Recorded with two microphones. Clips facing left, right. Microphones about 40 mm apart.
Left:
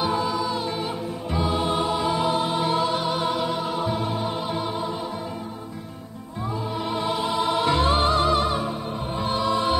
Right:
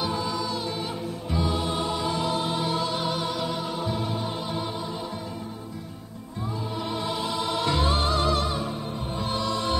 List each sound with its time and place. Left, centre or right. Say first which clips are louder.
0.0 s music: left 4 dB; centre
6.9 s music: left 5 dB; centre